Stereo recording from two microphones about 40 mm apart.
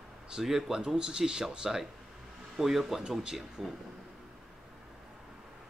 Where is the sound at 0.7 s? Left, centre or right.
Centre.